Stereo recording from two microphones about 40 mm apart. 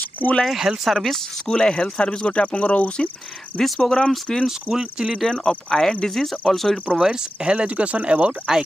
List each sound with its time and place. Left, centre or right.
0.2 s speech: left
0.8 s speech: centre
1.5 s speech: centre
3.6 s speech: centre
4.5 s cricket: centre
5.2 s speech: centre
5.5 s speech: centre
6.2 s speech: centre
6.9 s speech: centre
8.5 s cricket: centre